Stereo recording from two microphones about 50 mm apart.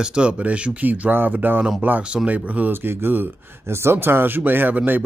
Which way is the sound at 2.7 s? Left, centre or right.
Right.